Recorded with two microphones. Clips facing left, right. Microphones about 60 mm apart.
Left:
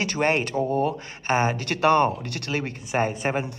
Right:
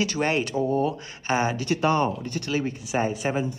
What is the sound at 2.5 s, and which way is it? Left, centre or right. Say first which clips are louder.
Speech: even; left.